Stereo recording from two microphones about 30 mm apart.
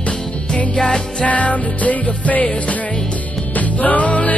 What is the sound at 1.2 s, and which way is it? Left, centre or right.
Music, left.